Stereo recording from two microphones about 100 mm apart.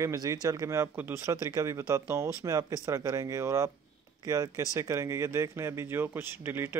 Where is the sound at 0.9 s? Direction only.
15° right (ahead or behind).